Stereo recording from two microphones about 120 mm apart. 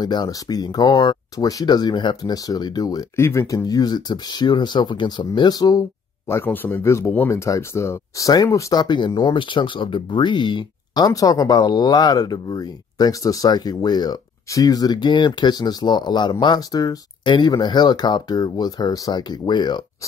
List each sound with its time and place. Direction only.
0.0 s speech: 35° left (ahead or behind)